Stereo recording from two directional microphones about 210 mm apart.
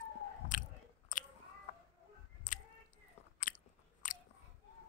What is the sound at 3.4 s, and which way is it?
Biting, 40° left (ahead or behind).